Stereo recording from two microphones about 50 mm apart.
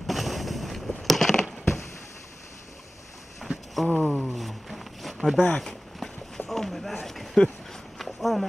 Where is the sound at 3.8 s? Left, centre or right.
Left.